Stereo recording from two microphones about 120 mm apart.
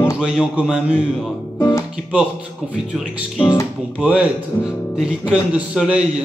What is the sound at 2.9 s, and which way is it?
Speech, 5° right (ahead or behind).